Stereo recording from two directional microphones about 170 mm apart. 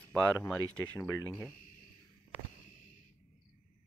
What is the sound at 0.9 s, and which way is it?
Speech, 15° left (ahead or behind).